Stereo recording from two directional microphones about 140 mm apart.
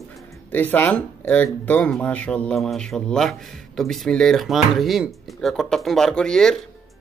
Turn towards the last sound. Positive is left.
turn(degrees=5)  # may be behind; listen again after turning